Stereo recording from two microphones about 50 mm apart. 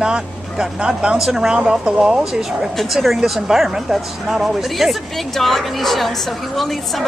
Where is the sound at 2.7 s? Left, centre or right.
Centre.